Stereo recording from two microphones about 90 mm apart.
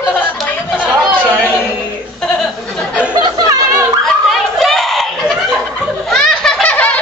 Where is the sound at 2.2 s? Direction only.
5° left (ahead or behind).